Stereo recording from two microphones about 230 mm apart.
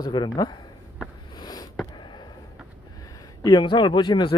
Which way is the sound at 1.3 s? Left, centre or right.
Centre.